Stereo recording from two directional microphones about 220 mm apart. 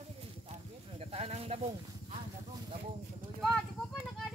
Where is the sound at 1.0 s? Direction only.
30° right (ahead or behind).